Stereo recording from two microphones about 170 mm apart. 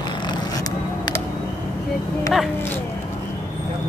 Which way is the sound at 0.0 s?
25° left (ahead or behind).